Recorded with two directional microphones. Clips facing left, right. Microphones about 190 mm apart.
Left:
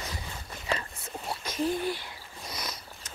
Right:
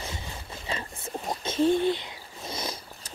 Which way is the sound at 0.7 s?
25° right (ahead or behind).